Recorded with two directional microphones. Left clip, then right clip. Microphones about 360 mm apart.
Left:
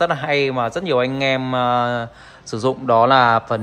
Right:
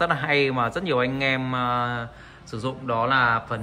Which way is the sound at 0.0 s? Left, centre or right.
Centre.